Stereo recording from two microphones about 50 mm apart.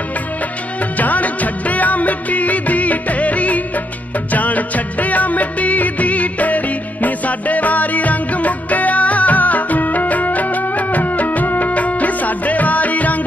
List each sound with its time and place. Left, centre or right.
0.9 s music: left